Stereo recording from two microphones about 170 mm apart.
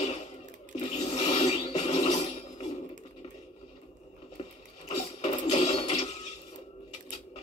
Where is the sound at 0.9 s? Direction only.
40° left (ahead or behind).